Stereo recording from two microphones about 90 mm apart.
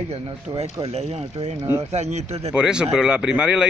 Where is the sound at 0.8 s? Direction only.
90° right.